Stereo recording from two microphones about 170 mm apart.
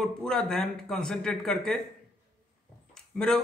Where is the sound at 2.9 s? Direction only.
5° left (ahead or behind).